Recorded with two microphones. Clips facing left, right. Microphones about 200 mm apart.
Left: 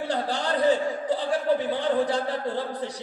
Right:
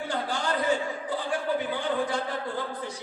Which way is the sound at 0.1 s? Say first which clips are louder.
Left 3 dB; 35° left (ahead or behind).